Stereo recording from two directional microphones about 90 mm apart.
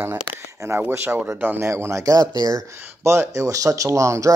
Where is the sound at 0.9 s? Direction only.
25° right (ahead or behind).